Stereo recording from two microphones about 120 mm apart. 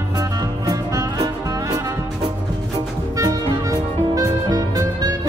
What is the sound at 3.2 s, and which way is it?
Music, 30° right (ahead or behind).